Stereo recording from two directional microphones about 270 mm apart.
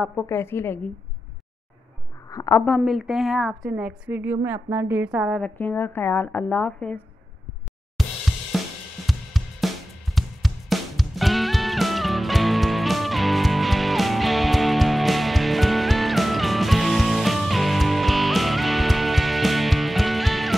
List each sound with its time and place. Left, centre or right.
0.0 s a woman's voice: centre
2.2 s a woman's voice: centre
8.3 s drum kit: centre